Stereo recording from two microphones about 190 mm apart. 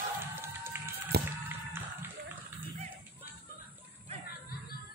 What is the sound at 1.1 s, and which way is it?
Music, 60° right (ahead or behind).